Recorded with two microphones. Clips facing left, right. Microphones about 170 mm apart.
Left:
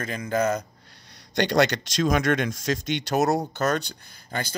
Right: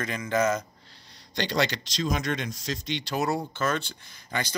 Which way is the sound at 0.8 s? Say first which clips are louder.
Left 2 dB; 60° left (ahead or behind).